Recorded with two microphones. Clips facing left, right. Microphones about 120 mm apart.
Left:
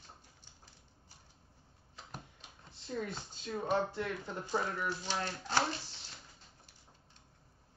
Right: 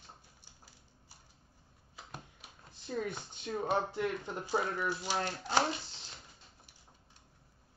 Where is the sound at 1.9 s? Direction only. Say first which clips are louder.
Even; 10° right (ahead or behind).